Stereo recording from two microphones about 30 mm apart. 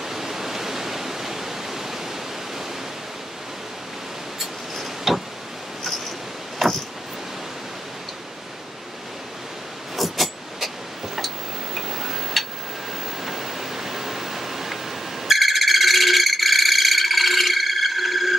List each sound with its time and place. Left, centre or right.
0.0 s waterfall: centre
4.4 s vehicle: centre
6.6 s vehicle: centre
9.9 s a sound: centre
11.1 s tick-tock: centre
13.2 s a sound: centre
15.2 s music: centre